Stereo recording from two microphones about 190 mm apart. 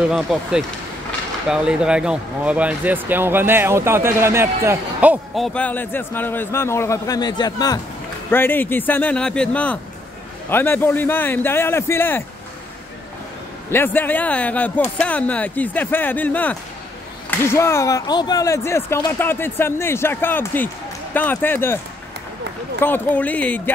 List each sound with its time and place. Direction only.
0.1 s speech: centre (ahead or behind)
13.7 s speech: 10° left (ahead or behind)
22.8 s speech: 10° left (ahead or behind)